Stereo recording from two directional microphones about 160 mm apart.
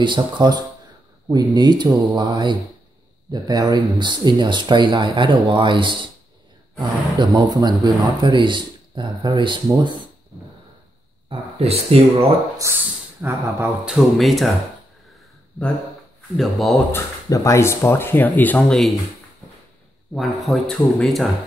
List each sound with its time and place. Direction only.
0.0 s speech: 30° right (ahead or behind)
11.2 s speech: 40° right (ahead or behind)
12.3 s speech: 20° right (ahead or behind)
13.8 s speech: centre (ahead or behind)
16.3 s speech: centre (ahead or behind)
16.9 s speech: 20° left (ahead or behind)
20.2 s speech: centre (ahead or behind)